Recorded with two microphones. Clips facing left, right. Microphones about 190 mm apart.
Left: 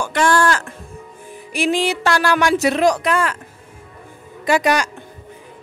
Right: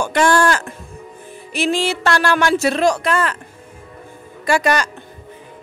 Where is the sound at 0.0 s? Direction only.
20° right (ahead or behind).